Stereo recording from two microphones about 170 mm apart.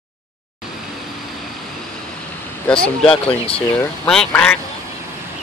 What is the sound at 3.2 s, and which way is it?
Speech, 35° left (ahead or behind).